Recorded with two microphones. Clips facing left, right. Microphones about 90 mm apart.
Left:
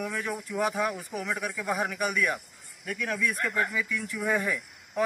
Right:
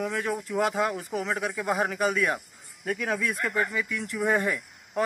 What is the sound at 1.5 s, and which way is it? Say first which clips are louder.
Speech: right 3 dB; 15° right (ahead or behind).